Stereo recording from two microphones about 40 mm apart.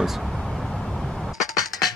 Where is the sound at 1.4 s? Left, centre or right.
Centre.